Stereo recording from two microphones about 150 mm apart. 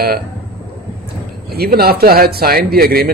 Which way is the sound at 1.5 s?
90° right.